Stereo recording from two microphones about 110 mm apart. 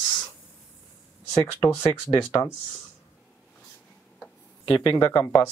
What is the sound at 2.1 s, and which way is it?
Speech, 35° left (ahead or behind).